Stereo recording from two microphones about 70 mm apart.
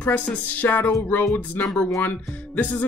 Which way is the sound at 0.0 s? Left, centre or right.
Left.